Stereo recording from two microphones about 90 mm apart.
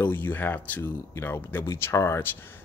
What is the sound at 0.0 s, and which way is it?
Speech, 25° left (ahead or behind).